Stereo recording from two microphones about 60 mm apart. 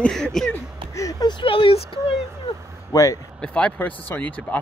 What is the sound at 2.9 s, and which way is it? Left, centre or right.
Speech, left.